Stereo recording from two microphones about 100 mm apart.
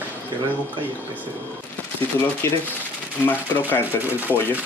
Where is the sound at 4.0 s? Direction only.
20° right (ahead or behind).